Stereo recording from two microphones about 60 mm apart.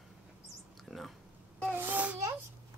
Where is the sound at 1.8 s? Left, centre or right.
Right.